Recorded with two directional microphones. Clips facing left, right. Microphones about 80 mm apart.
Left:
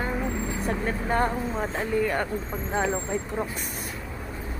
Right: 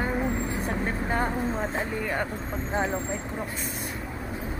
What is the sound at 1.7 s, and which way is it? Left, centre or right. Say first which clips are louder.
Speech: left 4 dB; centre.